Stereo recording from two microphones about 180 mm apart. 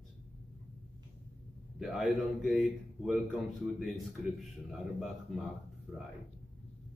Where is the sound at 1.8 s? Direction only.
Centre (ahead or behind).